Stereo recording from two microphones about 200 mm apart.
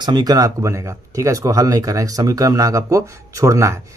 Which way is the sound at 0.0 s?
20° right (ahead or behind).